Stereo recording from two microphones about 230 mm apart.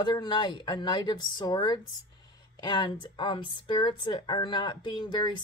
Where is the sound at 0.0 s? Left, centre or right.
Centre.